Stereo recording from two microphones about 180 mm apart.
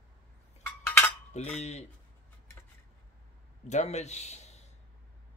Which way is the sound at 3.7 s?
40° left (ahead or behind).